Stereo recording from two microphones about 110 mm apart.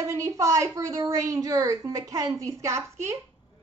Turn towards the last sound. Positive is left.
turn(degrees=-25)  # may be behind; listen again after turning